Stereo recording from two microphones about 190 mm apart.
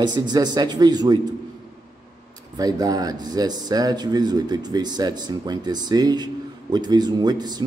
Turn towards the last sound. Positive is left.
turn(degrees=-20)  # may be behind; listen again after turning